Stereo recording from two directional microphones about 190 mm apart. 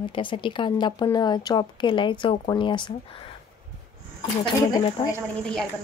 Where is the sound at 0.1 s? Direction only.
25° left (ahead or behind).